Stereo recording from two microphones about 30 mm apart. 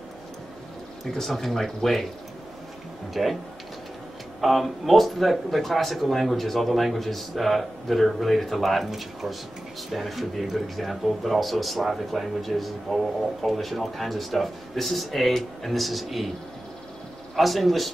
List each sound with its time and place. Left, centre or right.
1.2 s speech: centre
3.1 s speech: centre
4.4 s speech: centre
17.4 s speech: centre